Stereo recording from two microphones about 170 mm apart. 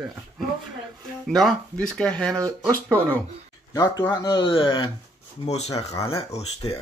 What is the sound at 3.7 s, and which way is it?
Speech, 25° left (ahead or behind).